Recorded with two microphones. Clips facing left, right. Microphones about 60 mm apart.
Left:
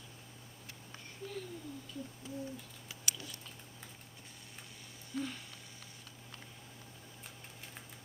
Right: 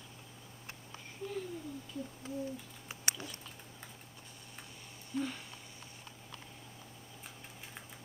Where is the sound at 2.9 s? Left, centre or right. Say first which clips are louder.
Right 4 dB; right.